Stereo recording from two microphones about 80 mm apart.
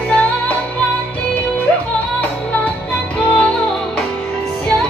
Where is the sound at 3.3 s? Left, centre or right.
Centre.